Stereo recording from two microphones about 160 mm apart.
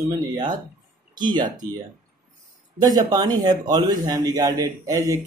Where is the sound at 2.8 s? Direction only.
25° right (ahead or behind).